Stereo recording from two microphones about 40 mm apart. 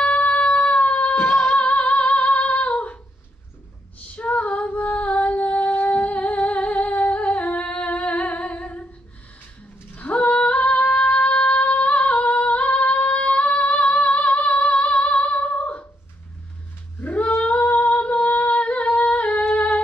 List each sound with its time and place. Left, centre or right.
0.0 s a sound: left
1.1 s singing: centre
1.8 s singing: left
2.4 s female singing: left
4.1 s female singing: left
9.9 s female singing: left
17.0 s female singing: left
19.5 s a sound: left